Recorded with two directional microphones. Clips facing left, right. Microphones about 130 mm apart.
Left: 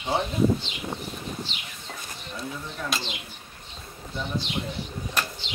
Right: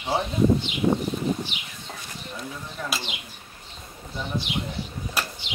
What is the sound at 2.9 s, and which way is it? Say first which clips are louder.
Speech: left 1 dB; 15° right (ahead or behind).